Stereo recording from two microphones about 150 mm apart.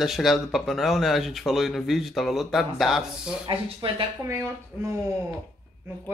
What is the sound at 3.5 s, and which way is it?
Speech, 30° right (ahead or behind).